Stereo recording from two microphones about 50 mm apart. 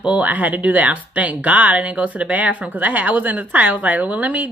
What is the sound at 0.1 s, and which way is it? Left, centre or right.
Speech, right.